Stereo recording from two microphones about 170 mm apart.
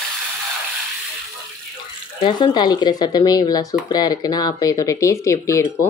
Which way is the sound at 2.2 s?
25° left (ahead or behind).